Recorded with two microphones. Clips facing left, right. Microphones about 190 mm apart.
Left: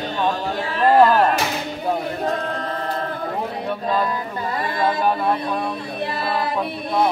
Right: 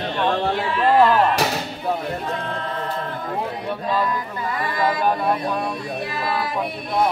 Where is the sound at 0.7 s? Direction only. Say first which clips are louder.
Left 2 dB; 40° left (ahead or behind).